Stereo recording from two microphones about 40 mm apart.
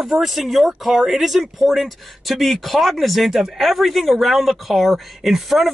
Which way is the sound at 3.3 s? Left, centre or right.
Centre.